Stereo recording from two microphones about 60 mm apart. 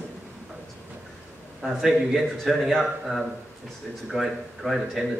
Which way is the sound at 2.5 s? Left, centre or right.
Centre.